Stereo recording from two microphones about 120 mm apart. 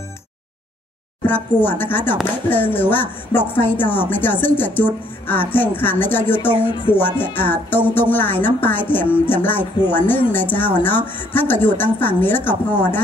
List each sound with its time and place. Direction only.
1.2 s speech: 15° left (ahead or behind)
6.7 s speech: 45° left (ahead or behind)
7.0 s speech: 15° left (ahead or behind)